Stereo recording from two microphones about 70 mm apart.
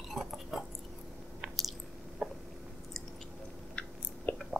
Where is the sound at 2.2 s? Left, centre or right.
Centre.